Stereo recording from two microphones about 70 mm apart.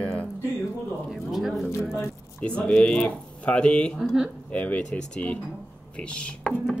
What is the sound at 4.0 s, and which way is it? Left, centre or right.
Speech, centre.